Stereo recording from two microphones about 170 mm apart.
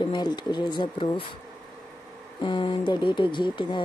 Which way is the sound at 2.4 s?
30° left (ahead or behind).